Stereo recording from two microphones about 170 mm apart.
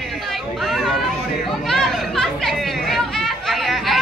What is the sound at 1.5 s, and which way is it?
Chatter, centre (ahead or behind).